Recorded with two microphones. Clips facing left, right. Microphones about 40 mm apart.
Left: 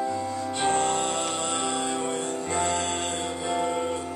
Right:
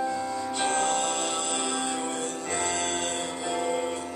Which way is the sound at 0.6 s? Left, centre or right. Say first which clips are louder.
Left 2 dB; centre.